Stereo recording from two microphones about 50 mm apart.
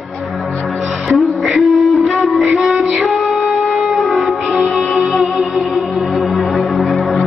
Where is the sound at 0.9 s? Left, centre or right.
Centre.